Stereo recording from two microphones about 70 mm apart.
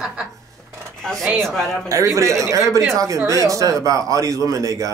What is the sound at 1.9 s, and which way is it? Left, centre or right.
Speech, right.